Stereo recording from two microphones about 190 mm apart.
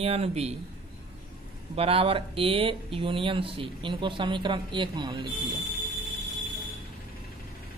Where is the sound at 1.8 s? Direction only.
30° right (ahead or behind).